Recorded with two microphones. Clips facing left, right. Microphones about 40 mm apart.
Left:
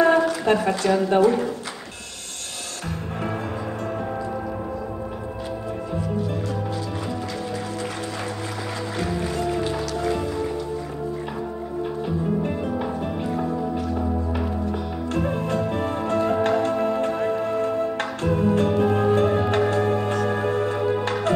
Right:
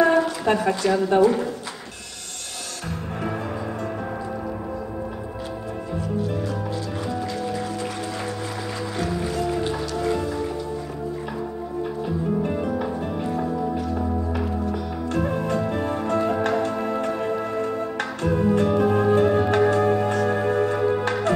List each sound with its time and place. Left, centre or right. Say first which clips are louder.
0.0 s a sound: left 1 dB; centre
0.7 s a woman's voice: even; centre
9.7 s music: even; centre
12.4 s music: right 1 dB; centre
16.2 s music: left 2 dB; centre
16.4 s music: left 2 dB; centre
20.7 s organ: right 1 dB; centre